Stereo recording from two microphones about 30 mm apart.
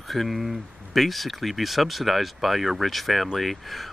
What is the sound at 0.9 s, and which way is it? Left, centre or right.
Speech, centre.